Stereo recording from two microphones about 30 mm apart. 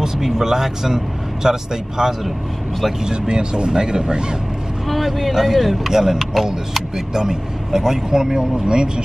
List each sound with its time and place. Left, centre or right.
0.0 s speech: centre
3.1 s speech: right
4.8 s speech: centre
5.3 s speech: centre
7.2 s speech: centre